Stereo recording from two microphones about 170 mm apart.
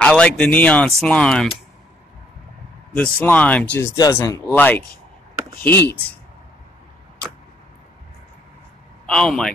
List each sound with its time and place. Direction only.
0.0 s speech: 5° left (ahead or behind)
2.9 s speech: 10° left (ahead or behind)
3.9 s speech: 20° left (ahead or behind)
9.0 s speech: 5° left (ahead or behind)